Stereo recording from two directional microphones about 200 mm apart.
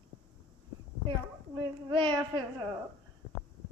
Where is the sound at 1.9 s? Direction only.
25° right (ahead or behind).